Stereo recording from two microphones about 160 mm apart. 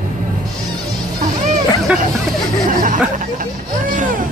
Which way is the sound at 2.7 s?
60° right (ahead or behind).